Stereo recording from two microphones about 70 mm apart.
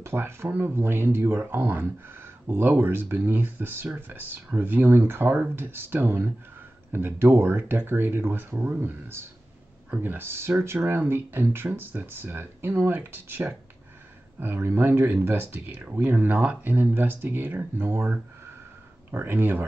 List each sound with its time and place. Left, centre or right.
0.0 s speech: right